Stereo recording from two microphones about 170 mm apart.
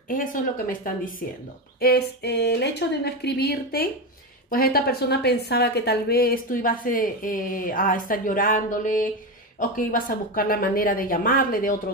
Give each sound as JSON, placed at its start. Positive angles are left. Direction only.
{"t": 0.1, "sound": "speech", "side_deg": 55}
{"t": 1.8, "sound": "a woman's voice", "side_deg": 65}